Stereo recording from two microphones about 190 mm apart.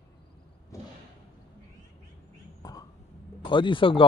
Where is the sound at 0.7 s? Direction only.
15° left (ahead or behind).